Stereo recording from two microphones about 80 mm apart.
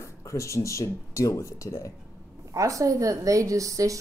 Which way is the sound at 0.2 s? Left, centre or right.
Left.